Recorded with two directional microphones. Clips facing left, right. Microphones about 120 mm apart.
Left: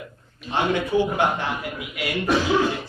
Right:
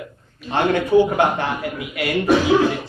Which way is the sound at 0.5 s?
60° right (ahead or behind).